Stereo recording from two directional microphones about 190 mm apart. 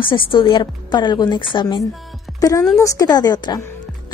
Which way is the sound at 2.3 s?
20° left (ahead or behind).